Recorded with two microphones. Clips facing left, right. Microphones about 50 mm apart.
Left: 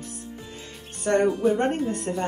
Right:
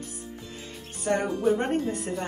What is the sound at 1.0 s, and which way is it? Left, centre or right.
Speech, left.